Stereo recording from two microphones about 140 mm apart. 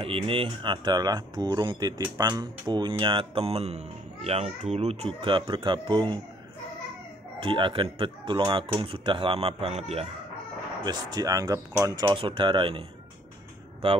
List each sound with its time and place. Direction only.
0.0 s speech: 40° right (ahead or behind)
7.3 s speech: 35° right (ahead or behind)
10.8 s speech: 30° right (ahead or behind)
12.1 s speech: 35° right (ahead or behind)